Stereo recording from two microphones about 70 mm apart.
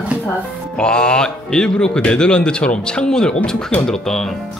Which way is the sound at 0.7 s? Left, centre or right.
Centre.